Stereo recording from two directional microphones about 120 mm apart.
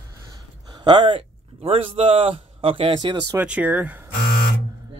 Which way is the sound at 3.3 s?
10° right (ahead or behind).